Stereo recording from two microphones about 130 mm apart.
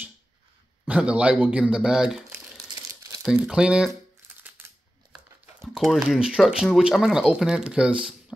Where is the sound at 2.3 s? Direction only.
25° right (ahead or behind).